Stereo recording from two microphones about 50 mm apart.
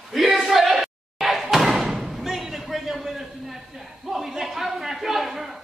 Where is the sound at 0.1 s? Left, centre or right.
Centre.